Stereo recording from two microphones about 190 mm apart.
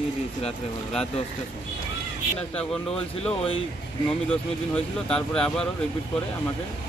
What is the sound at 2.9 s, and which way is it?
Speech, 5° left (ahead or behind).